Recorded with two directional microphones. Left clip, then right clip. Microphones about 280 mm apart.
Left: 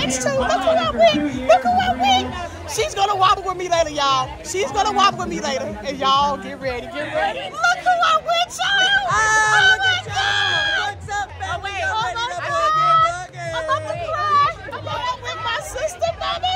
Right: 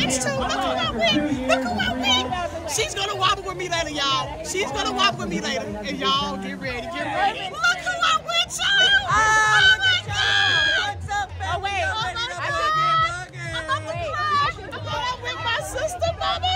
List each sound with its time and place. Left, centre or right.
0.0 s chatter: centre
0.7 s music: centre
2.7 s speech: centre
7.2 s hubbub: centre
9.0 s honk: centre
9.9 s a sound: centre
11.9 s music: centre
12.5 s a sound: centre
13.6 s music: centre
15.0 s a sound: centre